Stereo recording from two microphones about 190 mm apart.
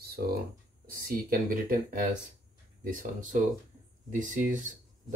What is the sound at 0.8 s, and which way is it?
Speech, 50° right (ahead or behind).